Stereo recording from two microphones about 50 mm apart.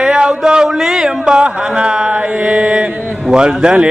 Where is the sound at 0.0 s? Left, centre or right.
Centre.